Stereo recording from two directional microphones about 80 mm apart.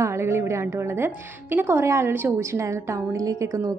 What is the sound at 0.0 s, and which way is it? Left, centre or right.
A woman's voice, right.